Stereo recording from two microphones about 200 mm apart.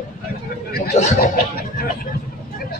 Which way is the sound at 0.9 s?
45° left (ahead or behind).